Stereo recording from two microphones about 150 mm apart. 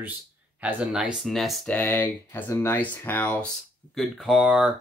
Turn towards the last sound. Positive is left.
turn(degrees=-5)  # may be behind; listen again after turning